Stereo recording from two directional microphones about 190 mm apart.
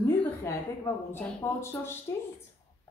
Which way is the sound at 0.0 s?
15° left (ahead or behind).